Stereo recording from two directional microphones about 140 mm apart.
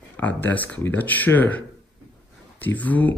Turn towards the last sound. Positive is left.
turn(degrees=10)  # may be behind; listen again after turning